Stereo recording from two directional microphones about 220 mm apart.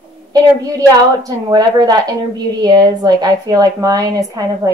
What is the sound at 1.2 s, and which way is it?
A woman's voice, 20° right (ahead or behind).